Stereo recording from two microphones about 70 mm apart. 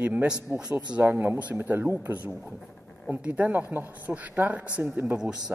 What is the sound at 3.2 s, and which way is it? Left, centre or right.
Speech, right.